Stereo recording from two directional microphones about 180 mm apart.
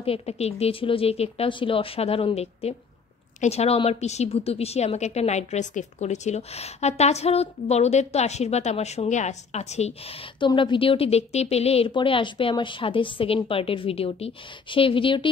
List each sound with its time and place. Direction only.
0.0 s a woman's voice: 35° left (ahead or behind)
10.4 s a woman's voice: 25° left (ahead or behind)